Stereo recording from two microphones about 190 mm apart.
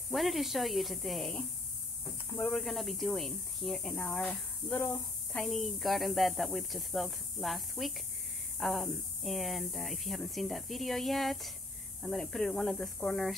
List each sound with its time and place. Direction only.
0.1 s speech: centre (ahead or behind)